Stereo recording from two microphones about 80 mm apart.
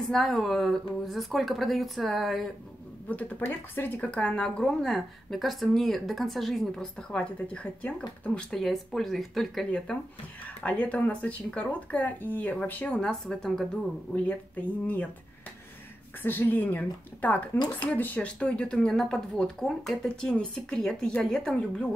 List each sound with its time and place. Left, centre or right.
0.0 s a woman's voice: centre
3.1 s speech: left
4.0 s a woman's voice: centre
9.7 s speech: centre
13.1 s a woman's voice: centre
14.1 s speech: centre
16.2 s speech: left